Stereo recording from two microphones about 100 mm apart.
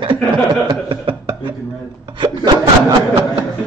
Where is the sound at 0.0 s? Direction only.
50° right (ahead or behind).